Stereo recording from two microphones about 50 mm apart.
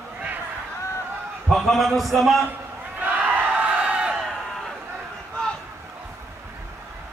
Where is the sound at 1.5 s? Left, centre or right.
Centre.